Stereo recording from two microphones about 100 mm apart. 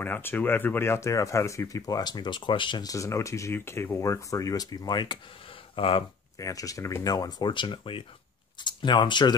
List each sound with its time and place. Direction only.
0.0 s speech: 20° left (ahead or behind); by 2.9 s 55° left (ahead or behind)
2.9 s speech: 30° left (ahead or behind); by 5.2 s 45° left (ahead or behind)
5.8 s speech: 65° left (ahead or behind)
6.3 s speech: 35° left (ahead or behind); by 9.3 s 50° left (ahead or behind)